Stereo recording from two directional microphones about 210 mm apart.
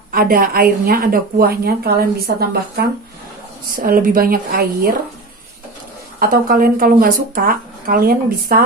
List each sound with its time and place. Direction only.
0.1 s a woman's voice: 45° right (ahead or behind)
6.1 s a woman's voice: 40° right (ahead or behind)